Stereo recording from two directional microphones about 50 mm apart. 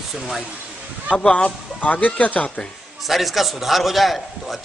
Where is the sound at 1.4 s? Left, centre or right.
Left.